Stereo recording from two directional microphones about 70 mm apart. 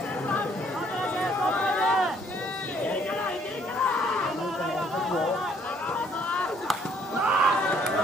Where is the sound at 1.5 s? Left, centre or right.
Left.